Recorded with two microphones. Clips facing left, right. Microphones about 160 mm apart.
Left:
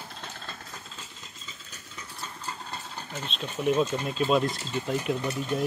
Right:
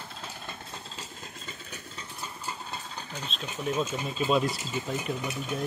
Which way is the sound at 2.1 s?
10° right (ahead or behind).